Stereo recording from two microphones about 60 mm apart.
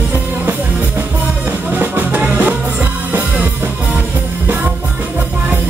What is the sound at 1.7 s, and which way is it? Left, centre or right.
Music, right.